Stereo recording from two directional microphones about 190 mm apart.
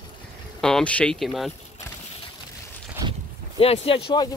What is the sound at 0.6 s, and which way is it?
Speech, 5° left (ahead or behind).